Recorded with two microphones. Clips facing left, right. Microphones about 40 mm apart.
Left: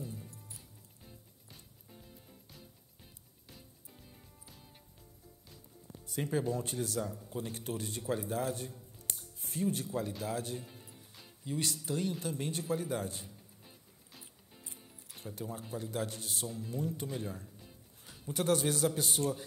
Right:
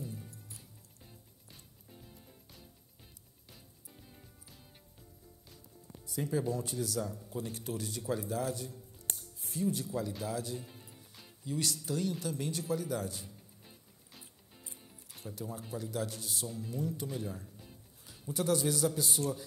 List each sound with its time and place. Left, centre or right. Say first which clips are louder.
6.0 s speech: even; left
9.1 s music: even; left
10.2 s speech: even; left
10.6 s music: even; centre
11.4 s speech: right 1 dB; left
15.3 s speech: even; left
18.3 s a man's voice: even; left